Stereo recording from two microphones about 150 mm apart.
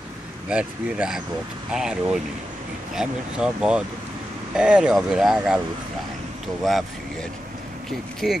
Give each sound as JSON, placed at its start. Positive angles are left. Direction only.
{"t": 0.5, "sound": "speech", "side_deg": -5}